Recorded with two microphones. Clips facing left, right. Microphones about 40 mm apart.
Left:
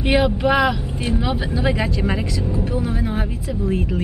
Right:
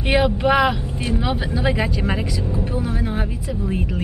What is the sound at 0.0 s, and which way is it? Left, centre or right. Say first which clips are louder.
Speech: even; centre.